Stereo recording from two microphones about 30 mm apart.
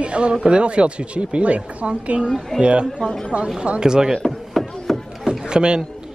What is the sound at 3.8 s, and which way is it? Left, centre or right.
Speech, right.